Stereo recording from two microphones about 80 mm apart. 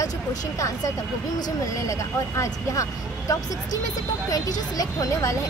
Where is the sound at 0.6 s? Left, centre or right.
Left.